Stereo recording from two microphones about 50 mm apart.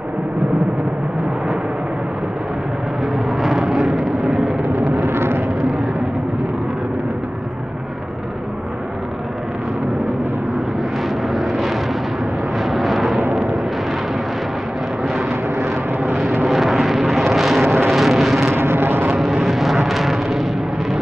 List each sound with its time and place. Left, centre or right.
3.3 s vehicle: centre
4.9 s vehicle: right
11.3 s vehicle: centre
13.3 s eruption: centre
16.0 s vehicle: centre
18.5 s vehicle: right
19.1 s vehicle: centre